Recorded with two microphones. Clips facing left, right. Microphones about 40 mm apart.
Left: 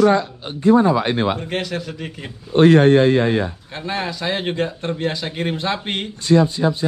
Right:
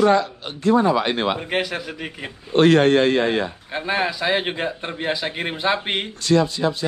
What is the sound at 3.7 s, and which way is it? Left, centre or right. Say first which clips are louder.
A man's voice: right 3 dB; centre.